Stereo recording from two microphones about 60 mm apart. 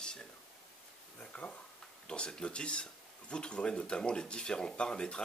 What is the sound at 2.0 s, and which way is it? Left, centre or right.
Speech, centre.